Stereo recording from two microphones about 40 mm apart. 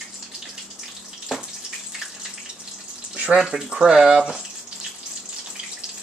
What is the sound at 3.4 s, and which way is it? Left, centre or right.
Speech, centre.